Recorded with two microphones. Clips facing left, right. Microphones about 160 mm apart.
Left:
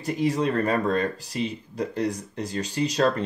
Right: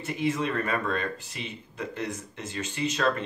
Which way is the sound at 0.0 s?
35° left (ahead or behind).